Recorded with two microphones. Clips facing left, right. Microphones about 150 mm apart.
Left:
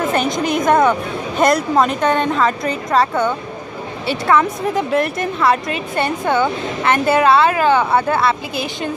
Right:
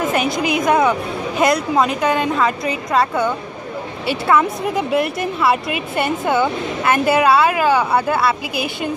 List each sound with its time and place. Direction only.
0.1 s a woman's voice: 5° right (ahead or behind)